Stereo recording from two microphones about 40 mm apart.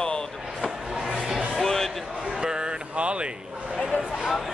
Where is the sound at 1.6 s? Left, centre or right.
Centre.